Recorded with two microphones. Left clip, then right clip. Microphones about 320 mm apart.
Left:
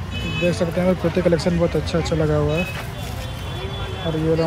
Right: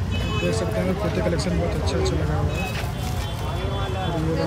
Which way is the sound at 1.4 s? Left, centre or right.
Centre.